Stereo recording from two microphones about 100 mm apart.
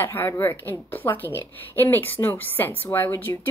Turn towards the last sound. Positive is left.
turn(degrees=20)  # may be behind; listen again after turning